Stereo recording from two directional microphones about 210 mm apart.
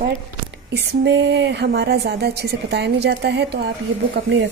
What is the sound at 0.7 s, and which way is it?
Speech, 55° right (ahead or behind).